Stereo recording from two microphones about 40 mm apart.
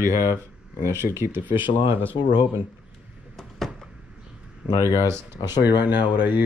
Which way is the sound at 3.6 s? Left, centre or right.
Centre.